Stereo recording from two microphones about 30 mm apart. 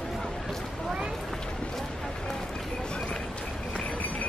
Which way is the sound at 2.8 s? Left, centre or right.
Left.